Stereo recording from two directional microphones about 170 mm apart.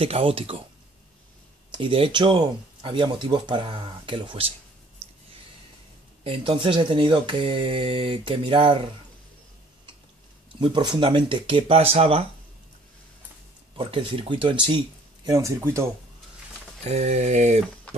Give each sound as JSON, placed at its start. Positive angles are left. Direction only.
{"t": 0.0, "sound": "speech", "side_deg": -35}
{"t": 1.7, "sound": "speech", "side_deg": -30}
{"t": 6.2, "sound": "speech", "side_deg": -30}
{"t": 10.6, "sound": "speech", "side_deg": -25}
{"t": 13.7, "sound": "speech", "side_deg": -30}
{"t": 15.2, "sound": "speech", "side_deg": -20}
{"t": 16.8, "sound": "speech", "side_deg": -40}